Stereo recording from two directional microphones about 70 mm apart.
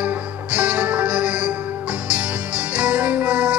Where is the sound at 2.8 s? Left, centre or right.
Centre.